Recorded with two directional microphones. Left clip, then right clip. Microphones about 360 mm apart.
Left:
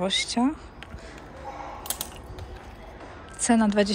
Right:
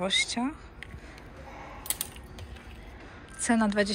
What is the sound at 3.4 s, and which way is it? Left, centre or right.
Speech, centre.